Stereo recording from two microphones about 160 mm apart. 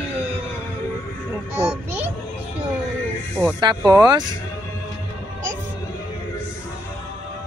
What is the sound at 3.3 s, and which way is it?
Music, 5° left (ahead or behind).